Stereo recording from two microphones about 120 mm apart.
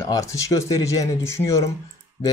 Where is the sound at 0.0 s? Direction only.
25° left (ahead or behind).